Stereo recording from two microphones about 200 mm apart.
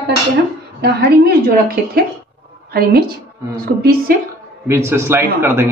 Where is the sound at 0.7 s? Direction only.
55° right (ahead or behind).